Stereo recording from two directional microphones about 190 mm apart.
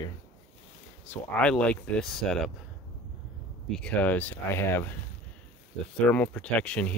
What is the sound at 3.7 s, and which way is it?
Speech, 5° left (ahead or behind).